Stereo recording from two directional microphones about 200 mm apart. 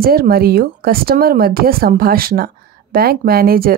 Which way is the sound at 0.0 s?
50° right (ahead or behind).